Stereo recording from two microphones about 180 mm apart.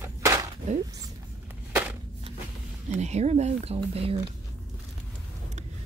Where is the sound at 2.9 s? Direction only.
40° right (ahead or behind).